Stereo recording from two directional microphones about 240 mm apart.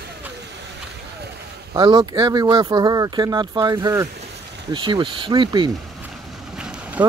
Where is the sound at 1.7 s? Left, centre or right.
Centre.